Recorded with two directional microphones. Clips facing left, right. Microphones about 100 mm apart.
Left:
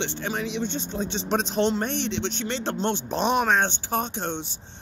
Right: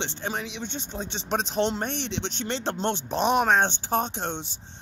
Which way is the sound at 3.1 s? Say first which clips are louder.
Right 1 dB; 10° right (ahead or behind).